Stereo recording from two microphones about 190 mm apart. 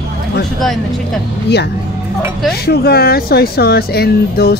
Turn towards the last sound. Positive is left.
turn(degrees=55)  # may be behind; listen again after turning